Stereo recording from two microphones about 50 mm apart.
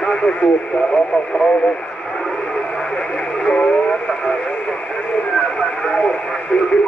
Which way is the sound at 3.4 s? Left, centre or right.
Centre.